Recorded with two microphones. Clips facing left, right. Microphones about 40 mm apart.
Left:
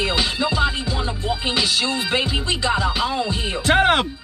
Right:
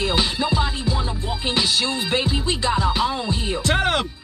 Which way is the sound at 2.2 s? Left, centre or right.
Centre.